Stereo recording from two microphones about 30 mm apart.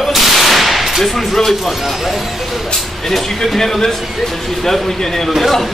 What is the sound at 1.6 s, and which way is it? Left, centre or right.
Speech, centre.